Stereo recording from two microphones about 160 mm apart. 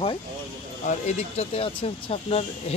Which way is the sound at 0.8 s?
45° left (ahead or behind).